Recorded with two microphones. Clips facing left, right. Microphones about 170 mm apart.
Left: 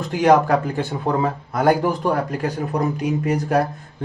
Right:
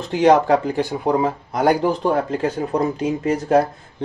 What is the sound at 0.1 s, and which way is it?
Speech, 25° right (ahead or behind).